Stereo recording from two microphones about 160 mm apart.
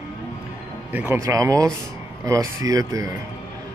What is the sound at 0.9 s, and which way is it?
Speech, 15° right (ahead or behind).